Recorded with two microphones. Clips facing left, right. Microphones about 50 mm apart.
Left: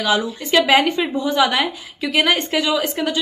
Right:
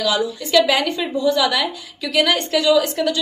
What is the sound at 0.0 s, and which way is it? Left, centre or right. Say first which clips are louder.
A woman's voice: left 1 dB; left.